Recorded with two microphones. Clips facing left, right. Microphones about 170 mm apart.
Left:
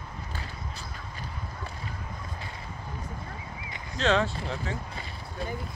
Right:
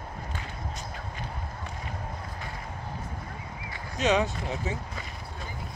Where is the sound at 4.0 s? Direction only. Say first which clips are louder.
Even; 15° right (ahead or behind).